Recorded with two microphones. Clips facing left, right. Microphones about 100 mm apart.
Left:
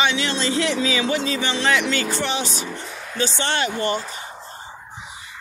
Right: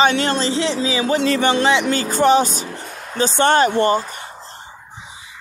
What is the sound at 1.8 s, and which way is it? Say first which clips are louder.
A man's voice: right 8 dB; 40° right (ahead or behind).